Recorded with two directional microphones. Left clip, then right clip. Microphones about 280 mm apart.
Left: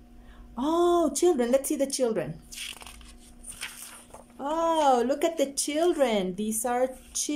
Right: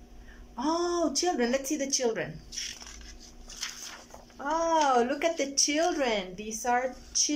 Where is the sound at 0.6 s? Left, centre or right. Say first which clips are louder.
Left 5 dB; centre.